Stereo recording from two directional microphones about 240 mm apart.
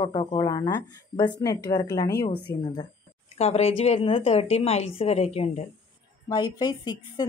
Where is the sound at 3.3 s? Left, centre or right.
Left.